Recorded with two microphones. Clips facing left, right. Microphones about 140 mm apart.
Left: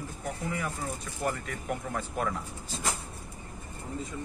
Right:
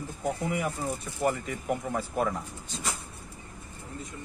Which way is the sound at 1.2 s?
5° right (ahead or behind).